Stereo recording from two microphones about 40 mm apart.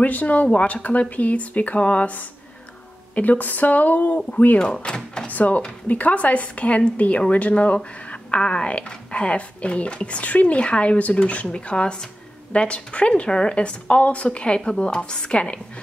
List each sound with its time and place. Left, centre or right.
0.0 s a woman's voice: left
4.6 s a woman's voice: left
5.2 s a woman's voice: left
11.4 s a woman's voice: left